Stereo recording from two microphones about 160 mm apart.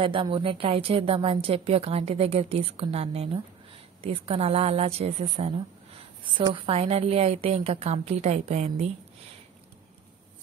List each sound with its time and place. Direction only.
0.0 s a woman's voice: 30° right (ahead or behind)